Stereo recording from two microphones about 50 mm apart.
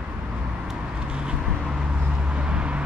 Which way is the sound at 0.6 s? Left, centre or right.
Centre.